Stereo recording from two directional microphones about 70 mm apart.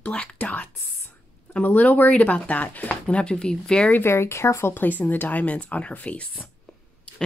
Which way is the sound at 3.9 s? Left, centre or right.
Left.